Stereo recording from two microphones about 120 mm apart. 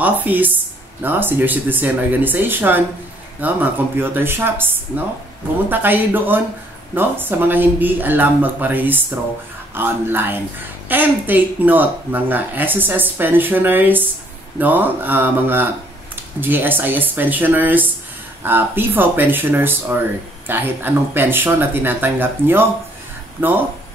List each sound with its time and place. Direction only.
0.0 s speech: 15° right (ahead or behind)